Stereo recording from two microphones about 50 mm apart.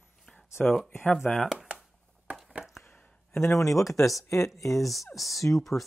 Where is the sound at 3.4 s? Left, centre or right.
Left.